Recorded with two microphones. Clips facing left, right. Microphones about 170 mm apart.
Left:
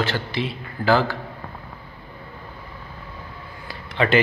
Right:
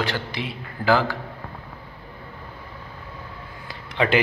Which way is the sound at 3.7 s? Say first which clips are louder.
Left 1 dB; 15° right (ahead or behind).